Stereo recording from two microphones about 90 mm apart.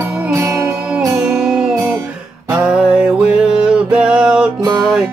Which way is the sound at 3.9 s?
10° right (ahead or behind).